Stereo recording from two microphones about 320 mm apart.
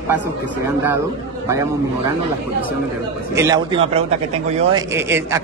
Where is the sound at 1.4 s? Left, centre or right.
Centre.